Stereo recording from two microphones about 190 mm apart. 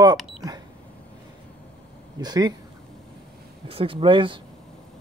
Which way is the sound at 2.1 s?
20° right (ahead or behind).